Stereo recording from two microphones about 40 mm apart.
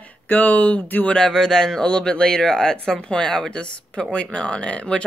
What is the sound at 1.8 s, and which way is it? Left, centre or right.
Speech, left.